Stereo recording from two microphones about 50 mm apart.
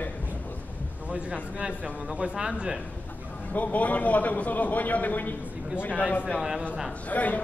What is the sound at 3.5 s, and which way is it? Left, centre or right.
A man's voice, left.